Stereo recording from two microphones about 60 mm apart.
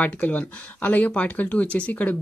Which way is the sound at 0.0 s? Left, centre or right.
Left.